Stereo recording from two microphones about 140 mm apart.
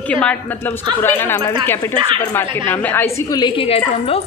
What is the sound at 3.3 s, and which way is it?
Speech, 30° left (ahead or behind).